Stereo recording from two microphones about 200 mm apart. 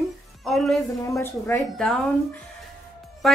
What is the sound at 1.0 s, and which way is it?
Speech, 15° left (ahead or behind).